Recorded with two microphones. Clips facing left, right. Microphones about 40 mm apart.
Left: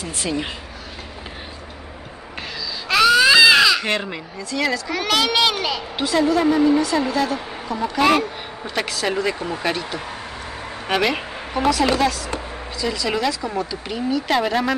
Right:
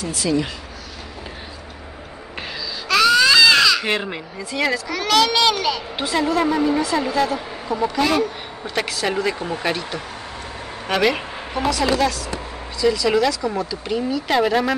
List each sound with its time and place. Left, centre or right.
0.0 s speech: left
2.9 s baby cry: centre
3.8 s speech: centre
4.8 s a child's voice: centre
5.9 s a woman's voice: centre
8.0 s speech: left
8.6 s a woman's voice: centre
12.8 s a child's voice: centre